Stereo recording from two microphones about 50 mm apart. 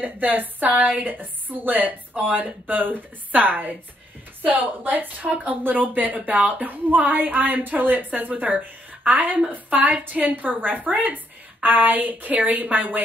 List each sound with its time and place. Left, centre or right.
0.0 s speech: right